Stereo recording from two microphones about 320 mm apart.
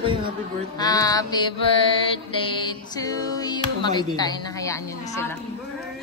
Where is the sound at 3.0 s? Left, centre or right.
Centre.